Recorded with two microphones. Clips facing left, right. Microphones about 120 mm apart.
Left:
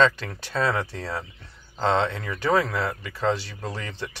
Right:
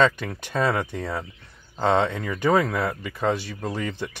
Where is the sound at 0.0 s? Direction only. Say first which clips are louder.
Even; 15° right (ahead or behind).